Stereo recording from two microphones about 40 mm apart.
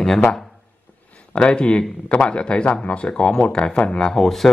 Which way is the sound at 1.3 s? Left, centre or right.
Left.